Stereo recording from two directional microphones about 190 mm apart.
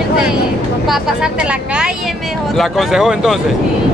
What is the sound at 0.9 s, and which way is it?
Speech, 5° right (ahead or behind).